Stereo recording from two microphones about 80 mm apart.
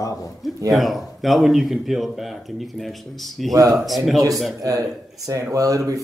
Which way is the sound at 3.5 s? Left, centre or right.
Right.